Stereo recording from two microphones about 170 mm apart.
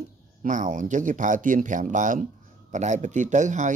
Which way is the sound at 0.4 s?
50° right (ahead or behind).